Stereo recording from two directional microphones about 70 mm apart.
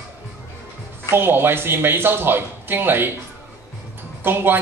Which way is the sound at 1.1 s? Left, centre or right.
Right.